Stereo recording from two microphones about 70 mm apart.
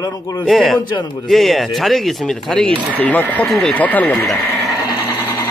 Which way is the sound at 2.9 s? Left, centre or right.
Left.